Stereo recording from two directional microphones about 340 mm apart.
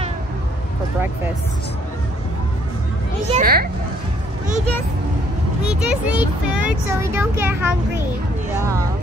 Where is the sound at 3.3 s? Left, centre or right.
Right.